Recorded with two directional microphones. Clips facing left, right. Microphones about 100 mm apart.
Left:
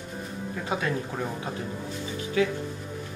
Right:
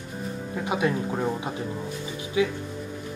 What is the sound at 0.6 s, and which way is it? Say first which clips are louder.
Speech: right 4 dB; 15° right (ahead or behind).